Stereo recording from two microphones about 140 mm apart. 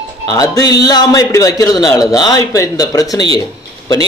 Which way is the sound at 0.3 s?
25° left (ahead or behind).